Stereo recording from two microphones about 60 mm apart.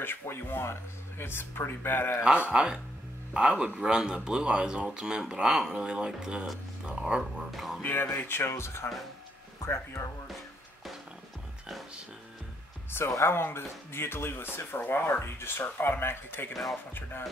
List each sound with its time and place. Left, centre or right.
0.0 s speech: left
2.2 s speech: centre
7.5 s speech: centre
7.8 s speech: left
13.1 s speech: left